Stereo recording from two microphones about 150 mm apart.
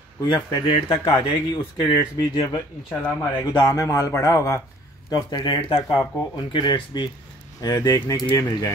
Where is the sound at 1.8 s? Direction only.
25° left (ahead or behind).